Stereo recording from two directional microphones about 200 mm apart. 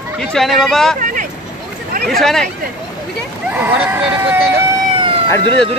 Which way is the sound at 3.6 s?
10° right (ahead or behind).